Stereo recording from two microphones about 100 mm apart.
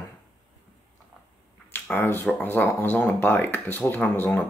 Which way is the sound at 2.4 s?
20° left (ahead or behind).